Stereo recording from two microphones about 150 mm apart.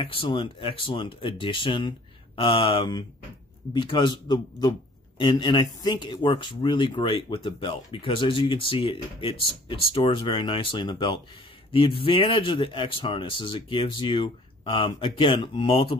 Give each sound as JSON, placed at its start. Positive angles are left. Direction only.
{"t": 0.0, "sound": "a man's voice", "side_deg": 35}